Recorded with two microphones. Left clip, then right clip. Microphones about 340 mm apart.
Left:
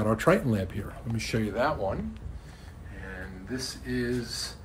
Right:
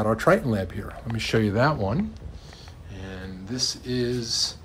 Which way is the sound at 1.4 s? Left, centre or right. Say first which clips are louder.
Right 4 dB; right.